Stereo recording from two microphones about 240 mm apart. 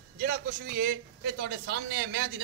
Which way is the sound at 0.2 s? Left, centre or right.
Right.